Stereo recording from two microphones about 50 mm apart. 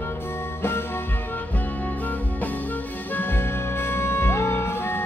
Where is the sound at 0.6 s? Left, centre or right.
Left.